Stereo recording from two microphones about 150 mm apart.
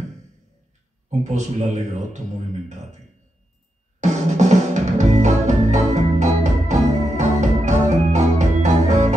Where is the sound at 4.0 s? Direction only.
50° right (ahead or behind).